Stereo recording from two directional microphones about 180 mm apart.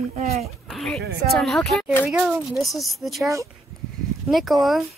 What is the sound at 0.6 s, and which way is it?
Speech, centre (ahead or behind).